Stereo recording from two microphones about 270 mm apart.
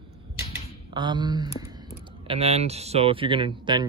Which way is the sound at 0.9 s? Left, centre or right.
Centre.